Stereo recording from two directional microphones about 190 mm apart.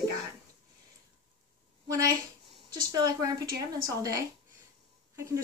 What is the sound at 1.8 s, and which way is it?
A woman's voice, 15° right (ahead or behind).